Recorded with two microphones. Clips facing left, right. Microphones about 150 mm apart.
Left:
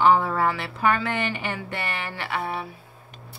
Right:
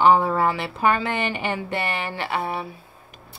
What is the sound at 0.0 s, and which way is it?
Speech, 20° right (ahead or behind).